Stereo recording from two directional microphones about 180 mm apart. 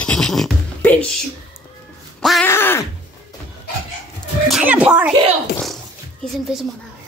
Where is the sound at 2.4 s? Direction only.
15° left (ahead or behind).